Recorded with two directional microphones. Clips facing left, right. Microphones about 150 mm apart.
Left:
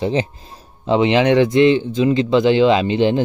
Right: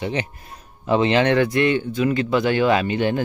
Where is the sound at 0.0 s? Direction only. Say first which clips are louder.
Left 6 dB; 30° left (ahead or behind).